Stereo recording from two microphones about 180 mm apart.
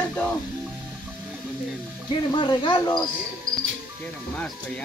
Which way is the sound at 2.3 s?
25° left (ahead or behind).